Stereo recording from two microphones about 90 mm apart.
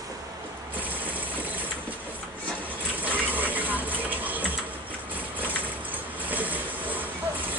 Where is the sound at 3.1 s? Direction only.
20° right (ahead or behind).